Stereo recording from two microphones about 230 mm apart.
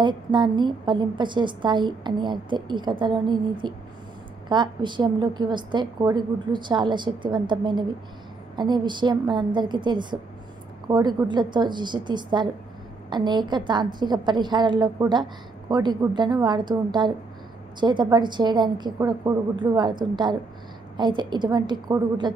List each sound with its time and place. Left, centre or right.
0.0 s a woman's voice: centre